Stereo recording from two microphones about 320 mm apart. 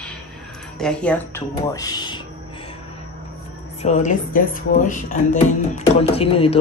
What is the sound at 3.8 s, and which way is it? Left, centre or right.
Speech, left.